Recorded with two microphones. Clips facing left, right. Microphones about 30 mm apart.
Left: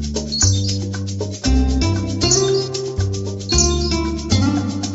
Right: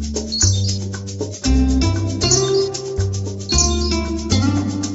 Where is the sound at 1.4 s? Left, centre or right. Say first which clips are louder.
Right 2 dB; centre.